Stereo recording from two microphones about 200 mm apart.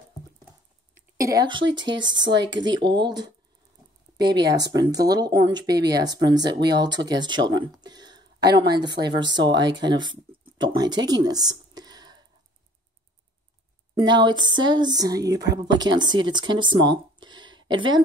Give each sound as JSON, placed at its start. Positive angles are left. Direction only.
{"t": 1.1, "sound": "a woman's voice", "side_deg": -15}
{"t": 2.2, "sound": "speech", "side_deg": -65}
{"t": 2.7, "sound": "speech", "side_deg": -20}
{"t": 4.7, "sound": "speech", "side_deg": -20}
{"t": 7.8, "sound": "a sound", "side_deg": -20}
{"t": 8.7, "sound": "speech", "side_deg": -20}
{"t": 10.6, "sound": "a sound", "side_deg": -20}
{"t": 13.9, "sound": "speech", "side_deg": -20}